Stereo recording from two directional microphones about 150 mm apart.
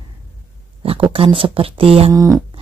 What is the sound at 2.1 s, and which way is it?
Music, 25° right (ahead or behind).